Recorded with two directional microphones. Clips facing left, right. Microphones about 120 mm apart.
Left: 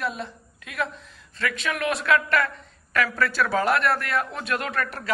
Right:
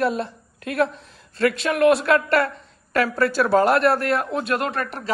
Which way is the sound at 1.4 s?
40° right (ahead or behind).